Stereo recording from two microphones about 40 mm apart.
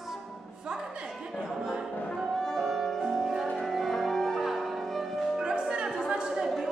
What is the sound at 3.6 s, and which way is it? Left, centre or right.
Music, centre.